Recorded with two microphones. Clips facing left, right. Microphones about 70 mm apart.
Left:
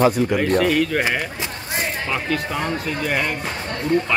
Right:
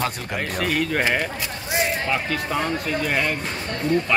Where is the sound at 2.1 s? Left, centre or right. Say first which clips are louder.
Left 1 dB; centre.